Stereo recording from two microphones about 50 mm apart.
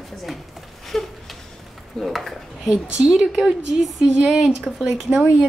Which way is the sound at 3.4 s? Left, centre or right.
Centre.